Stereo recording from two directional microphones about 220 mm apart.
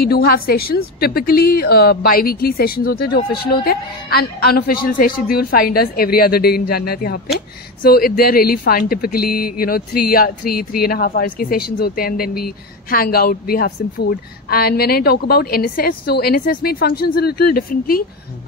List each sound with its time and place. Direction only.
0.0 s speech: 45° left (ahead or behind)